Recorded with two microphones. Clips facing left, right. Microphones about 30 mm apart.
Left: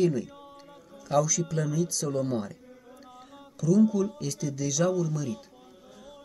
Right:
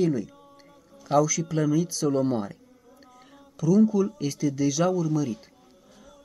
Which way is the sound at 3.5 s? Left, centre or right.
Centre.